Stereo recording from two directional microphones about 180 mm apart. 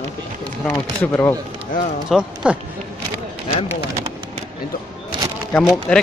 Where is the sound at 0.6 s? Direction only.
10° left (ahead or behind).